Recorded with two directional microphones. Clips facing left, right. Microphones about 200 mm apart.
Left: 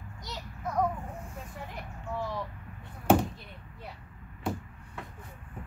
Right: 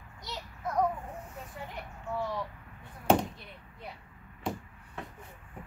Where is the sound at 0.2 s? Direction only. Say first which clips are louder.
Even; centre (ahead or behind).